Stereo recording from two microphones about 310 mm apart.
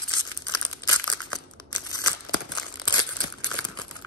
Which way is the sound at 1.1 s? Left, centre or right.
Left.